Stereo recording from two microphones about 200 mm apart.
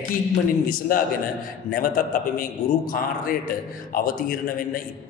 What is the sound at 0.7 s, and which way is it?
A man's voice, 45° left (ahead or behind).